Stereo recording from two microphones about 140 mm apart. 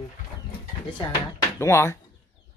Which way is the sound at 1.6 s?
20° left (ahead or behind).